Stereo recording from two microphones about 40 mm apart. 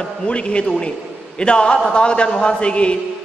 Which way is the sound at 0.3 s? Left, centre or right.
Left.